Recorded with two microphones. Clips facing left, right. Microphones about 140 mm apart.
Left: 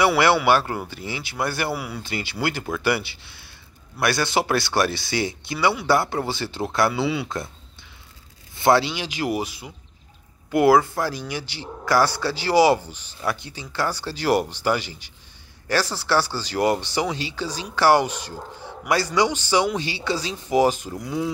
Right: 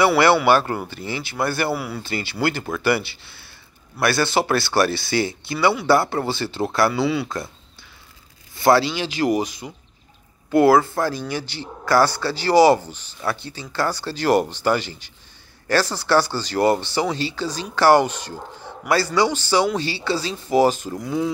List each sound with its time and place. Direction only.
0.0 s speech: 15° left (ahead or behind)
8.5 s speech: 20° left (ahead or behind)
20.9 s speech: centre (ahead or behind)